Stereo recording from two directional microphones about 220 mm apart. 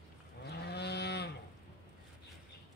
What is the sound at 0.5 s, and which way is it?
Moo, 50° left (ahead or behind).